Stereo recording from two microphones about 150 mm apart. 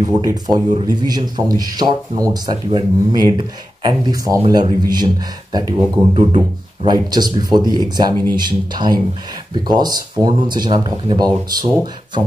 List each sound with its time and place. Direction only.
0.0 s speech: 25° right (ahead or behind)
6.1 s speech: 40° right (ahead or behind)